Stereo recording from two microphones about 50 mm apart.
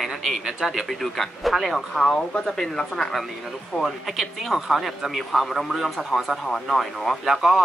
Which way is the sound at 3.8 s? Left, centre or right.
Centre.